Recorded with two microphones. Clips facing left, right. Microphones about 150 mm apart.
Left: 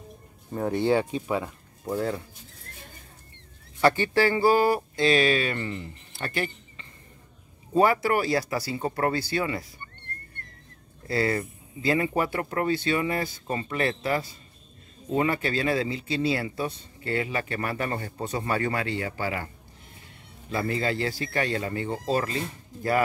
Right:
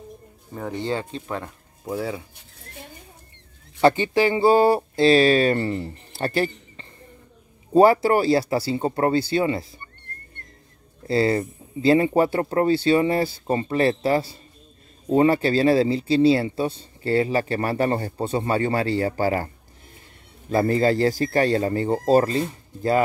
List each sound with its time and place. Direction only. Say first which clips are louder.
0.6 s speech: left 4 dB; 10° left (ahead or behind)
1.9 s speech: even; 5° right (ahead or behind)
3.8 s speech: right 4 dB; 20° right (ahead or behind)
11.1 s speech: right 6 dB; 25° right (ahead or behind)